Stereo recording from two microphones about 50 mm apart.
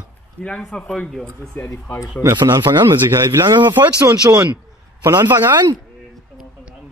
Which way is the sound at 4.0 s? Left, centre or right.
Right.